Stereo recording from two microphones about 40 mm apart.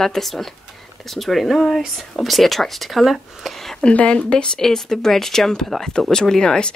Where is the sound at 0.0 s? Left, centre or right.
Centre.